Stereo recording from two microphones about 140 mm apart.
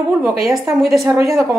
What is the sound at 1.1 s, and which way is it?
Speech, 20° right (ahead or behind).